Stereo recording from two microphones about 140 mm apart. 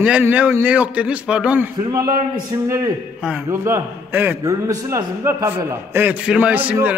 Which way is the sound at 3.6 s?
15° right (ahead or behind).